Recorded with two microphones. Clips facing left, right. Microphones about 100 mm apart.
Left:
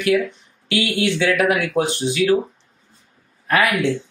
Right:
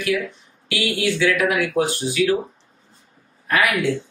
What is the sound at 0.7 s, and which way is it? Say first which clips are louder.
Speech: left 2 dB; 25° left (ahead or behind).